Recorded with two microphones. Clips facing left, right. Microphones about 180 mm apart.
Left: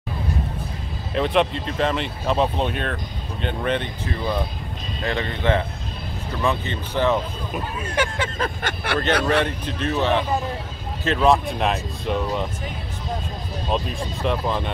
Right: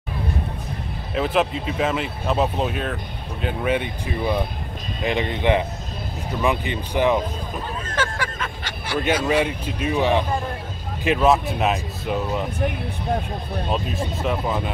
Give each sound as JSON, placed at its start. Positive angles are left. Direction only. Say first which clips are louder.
{"t": 1.1, "sound": "speech", "louder": "left 1 dB", "side_deg": 0}
{"t": 7.8, "sound": "speech", "louder": "left 2 dB", "side_deg": 15}
{"t": 8.6, "sound": "speech", "louder": "right 1 dB", "side_deg": 60}
{"t": 9.4, "sound": "speech", "louder": "right 1 dB", "side_deg": -10}
{"t": 12.5, "sound": "speech", "louder": "right 7 dB", "side_deg": -60}
{"t": 13.7, "sound": "speech", "louder": "left 1 dB", "side_deg": -5}